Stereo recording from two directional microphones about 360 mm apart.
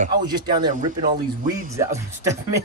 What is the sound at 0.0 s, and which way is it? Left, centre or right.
Speech, centre.